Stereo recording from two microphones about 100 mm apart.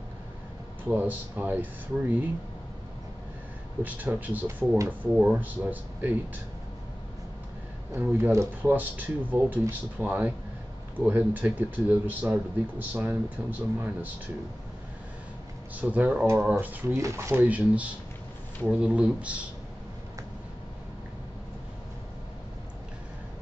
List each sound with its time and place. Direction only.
0.8 s speech: 15° right (ahead or behind)
3.8 s speech: 15° right (ahead or behind)
7.9 s speech: 20° right (ahead or behind)
8.3 s speech: 30° right (ahead or behind)
8.7 s speech: 15° right (ahead or behind)
15.7 s speech: 15° right (ahead or behind)
16.5 s speech: 25° right (ahead or behind)
17.5 s speech: 15° right (ahead or behind)